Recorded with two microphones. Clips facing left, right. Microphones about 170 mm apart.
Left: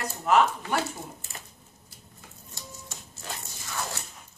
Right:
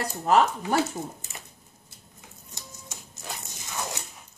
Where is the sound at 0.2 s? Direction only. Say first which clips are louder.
Right 1 dB; 35° right (ahead or behind).